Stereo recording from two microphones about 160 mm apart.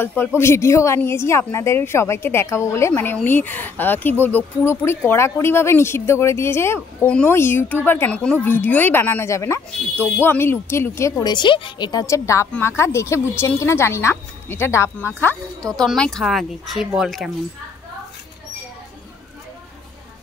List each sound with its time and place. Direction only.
0.0 s a woman's voice: 15° left (ahead or behind); by 17.3 s centre (ahead or behind)